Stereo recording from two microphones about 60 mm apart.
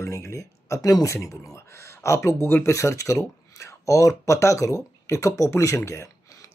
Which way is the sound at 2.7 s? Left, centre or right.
Left.